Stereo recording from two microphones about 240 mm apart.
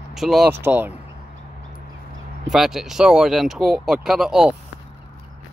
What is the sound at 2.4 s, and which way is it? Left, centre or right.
Speech, centre.